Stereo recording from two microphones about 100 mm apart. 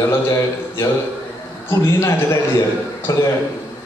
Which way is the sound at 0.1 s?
30° left (ahead or behind).